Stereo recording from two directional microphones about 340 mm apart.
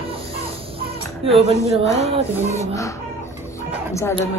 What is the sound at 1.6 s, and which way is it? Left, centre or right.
Speech, centre.